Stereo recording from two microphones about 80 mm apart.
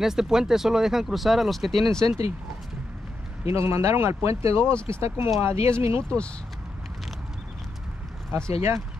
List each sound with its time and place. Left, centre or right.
0.0 s speech: centre
3.4 s speech: right
8.3 s speech: right